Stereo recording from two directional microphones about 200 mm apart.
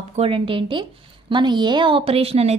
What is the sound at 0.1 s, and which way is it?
A woman's voice, 30° right (ahead or behind).